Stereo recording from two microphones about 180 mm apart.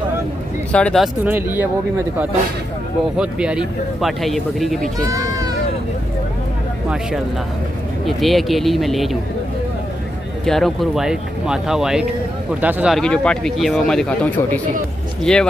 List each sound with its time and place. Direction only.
0.7 s speech: 5° left (ahead or behind)
1.2 s speech: 10° right (ahead or behind)
3.2 s speech: 5° right (ahead or behind)
4.9 s run: 20° right (ahead or behind)
8.0 s speech: centre (ahead or behind)
10.4 s speech: centre (ahead or behind)